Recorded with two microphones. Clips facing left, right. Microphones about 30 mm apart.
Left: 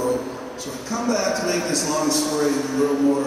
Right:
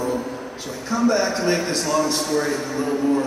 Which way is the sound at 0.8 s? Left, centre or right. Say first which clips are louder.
Right 3 dB; right.